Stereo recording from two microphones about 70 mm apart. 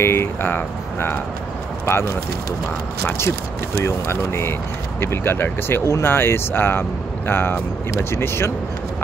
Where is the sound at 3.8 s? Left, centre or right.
Left.